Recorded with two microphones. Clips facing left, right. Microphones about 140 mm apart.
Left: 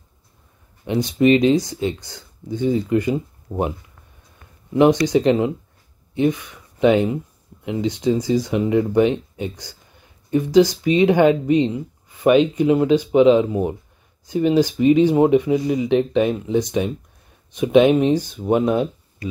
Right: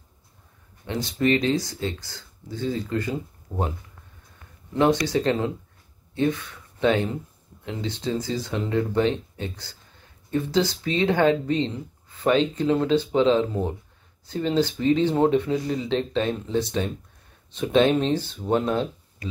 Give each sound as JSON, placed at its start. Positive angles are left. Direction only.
{"t": 0.8, "sound": "speech", "side_deg": 15}
{"t": 5.0, "sound": "speech", "side_deg": 15}